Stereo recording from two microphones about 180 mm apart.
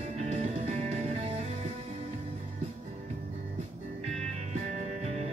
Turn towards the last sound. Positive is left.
turn(degrees=-35)  # may be behind; listen again after turning